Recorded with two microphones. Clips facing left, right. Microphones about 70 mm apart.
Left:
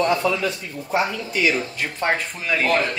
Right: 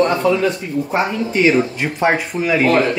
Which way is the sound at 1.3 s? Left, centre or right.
Right.